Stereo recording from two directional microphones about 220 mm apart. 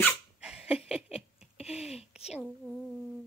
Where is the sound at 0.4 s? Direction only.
5° right (ahead or behind).